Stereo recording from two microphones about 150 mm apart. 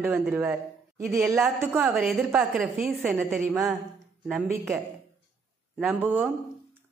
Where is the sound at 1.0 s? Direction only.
Centre (ahead or behind).